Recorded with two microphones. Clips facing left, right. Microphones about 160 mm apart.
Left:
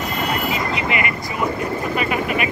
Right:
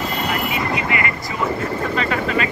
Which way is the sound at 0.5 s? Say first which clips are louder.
Even; 20° left (ahead or behind).